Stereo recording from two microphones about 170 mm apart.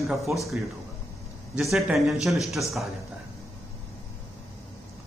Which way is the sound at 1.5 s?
Centre (ahead or behind).